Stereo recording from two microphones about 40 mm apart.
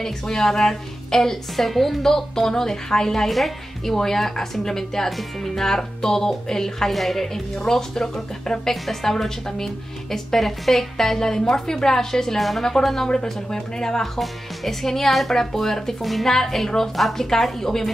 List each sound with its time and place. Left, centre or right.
0.0 s a woman's voice: centre
7.6 s a woman's voice: centre
13.1 s a woman's voice: centre
14.2 s a woman's voice: centre